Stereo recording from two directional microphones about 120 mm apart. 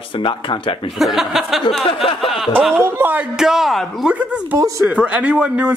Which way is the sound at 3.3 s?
5° right (ahead or behind).